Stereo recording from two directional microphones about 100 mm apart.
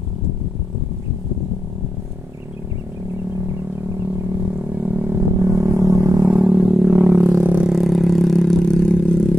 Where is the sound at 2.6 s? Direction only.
25° right (ahead or behind).